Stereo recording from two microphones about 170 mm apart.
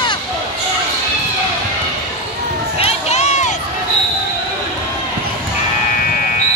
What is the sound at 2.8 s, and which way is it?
Crowd, 40° left (ahead or behind).